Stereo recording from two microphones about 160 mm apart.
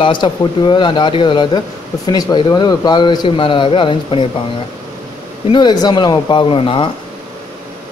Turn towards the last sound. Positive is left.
turn(degrees=35)  # may be behind; listen again after turning